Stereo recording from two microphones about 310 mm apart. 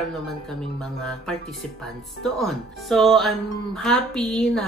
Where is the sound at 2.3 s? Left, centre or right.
Centre.